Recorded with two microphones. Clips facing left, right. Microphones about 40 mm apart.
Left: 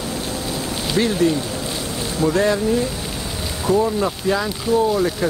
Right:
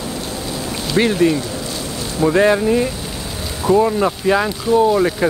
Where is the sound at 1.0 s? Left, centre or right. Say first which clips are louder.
Right 4 dB; right.